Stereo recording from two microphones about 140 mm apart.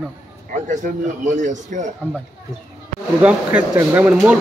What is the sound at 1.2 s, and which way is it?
Speech, 60° right (ahead or behind).